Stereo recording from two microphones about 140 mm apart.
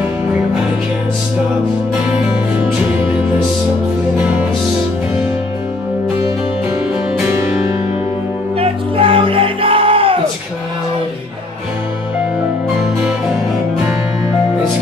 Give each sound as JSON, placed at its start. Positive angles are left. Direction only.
{"t": 4.2, "sound": "music", "side_deg": -10}
{"t": 8.5, "sound": "music", "side_deg": -40}